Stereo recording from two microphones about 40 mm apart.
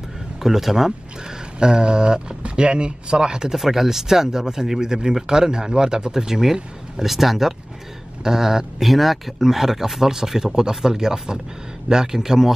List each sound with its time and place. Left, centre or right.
0.4 s speech: centre
1.6 s speech: right
3.5 s speech: centre
8.8 s speech: centre